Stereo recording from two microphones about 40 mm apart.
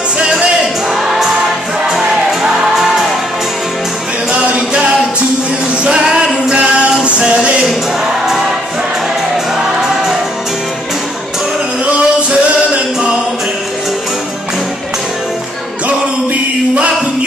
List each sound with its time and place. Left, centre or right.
0.2 s music: right
0.9 s music: centre
5.9 s music: centre
6.5 s music: right
11.8 s music: right